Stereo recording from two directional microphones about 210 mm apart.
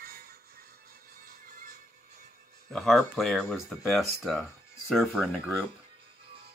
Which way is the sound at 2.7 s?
Centre (ahead or behind).